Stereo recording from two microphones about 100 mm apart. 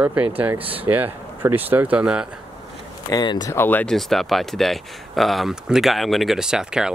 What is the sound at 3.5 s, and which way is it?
Speech, 20° left (ahead or behind).